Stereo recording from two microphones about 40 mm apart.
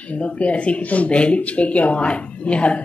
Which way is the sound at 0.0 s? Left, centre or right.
Left.